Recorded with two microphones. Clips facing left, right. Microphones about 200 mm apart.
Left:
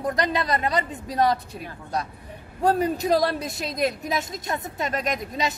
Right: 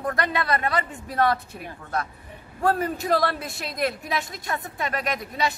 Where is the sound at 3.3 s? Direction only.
40° left (ahead or behind).